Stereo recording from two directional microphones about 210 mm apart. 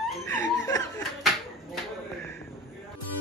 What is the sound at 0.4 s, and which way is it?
Snicker, 15° left (ahead or behind).